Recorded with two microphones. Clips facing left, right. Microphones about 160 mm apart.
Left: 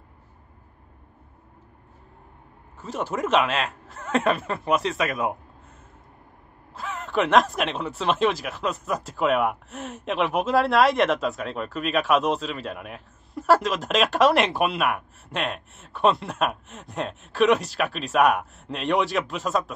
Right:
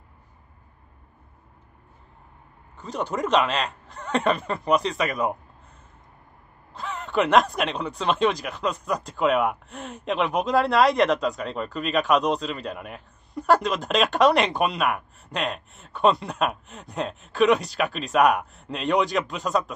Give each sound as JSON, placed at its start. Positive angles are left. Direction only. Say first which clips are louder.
{"t": 2.8, "sound": "speech", "louder": "even", "side_deg": 5}
{"t": 6.7, "sound": "speech", "louder": "even", "side_deg": 5}